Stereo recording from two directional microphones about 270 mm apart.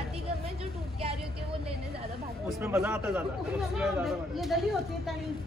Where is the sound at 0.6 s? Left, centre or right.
Right.